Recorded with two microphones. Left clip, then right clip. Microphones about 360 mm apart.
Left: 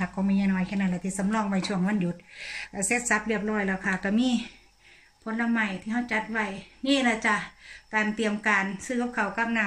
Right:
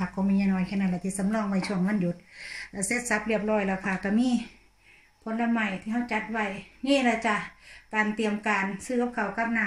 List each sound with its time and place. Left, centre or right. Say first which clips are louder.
0.1 s a woman's voice: even; centre